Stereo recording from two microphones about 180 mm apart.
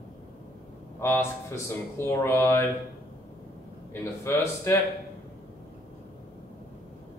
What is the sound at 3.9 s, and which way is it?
Speech, 15° left (ahead or behind).